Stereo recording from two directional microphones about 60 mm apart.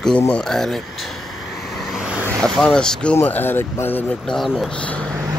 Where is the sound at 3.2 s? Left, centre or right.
Left.